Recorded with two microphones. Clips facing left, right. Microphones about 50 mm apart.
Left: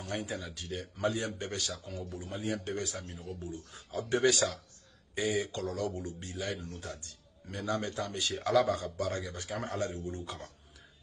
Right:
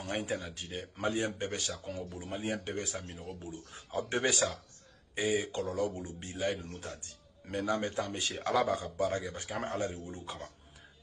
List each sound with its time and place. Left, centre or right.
0.0 s speech: right
5.1 s a sound: right
5.5 s speech: centre
6.2 s speech: right
8.8 s a man's voice: centre
9.4 s speech: right
10.0 s a man's voice: centre